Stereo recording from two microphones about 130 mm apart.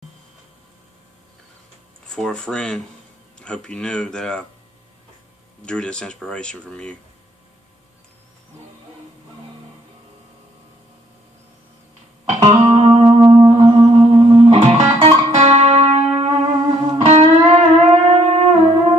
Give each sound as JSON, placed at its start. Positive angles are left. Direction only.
{"t": 2.0, "sound": "speech", "side_deg": 5}
{"t": 5.7, "sound": "speech", "side_deg": 5}
{"t": 12.5, "sound": "music", "side_deg": -40}